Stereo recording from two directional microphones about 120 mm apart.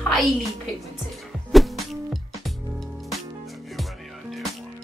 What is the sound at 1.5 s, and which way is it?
Music, centre (ahead or behind).